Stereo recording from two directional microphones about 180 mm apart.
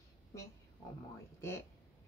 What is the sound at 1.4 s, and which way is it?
Speech, 15° left (ahead or behind).